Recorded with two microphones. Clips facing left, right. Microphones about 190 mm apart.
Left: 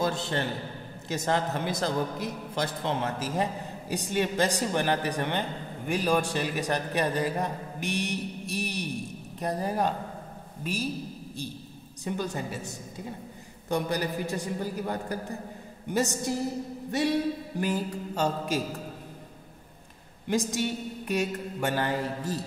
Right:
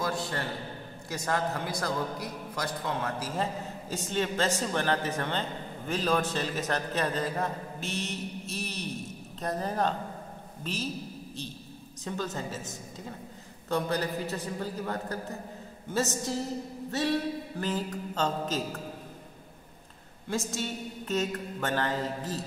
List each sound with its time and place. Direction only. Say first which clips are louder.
0.0 s a man's voice: left 3 dB; 25° left (ahead or behind)
12.0 s a woman's voice: left 2 dB; 15° left (ahead or behind)
20.2 s a woman's voice: left 5 dB; 15° left (ahead or behind)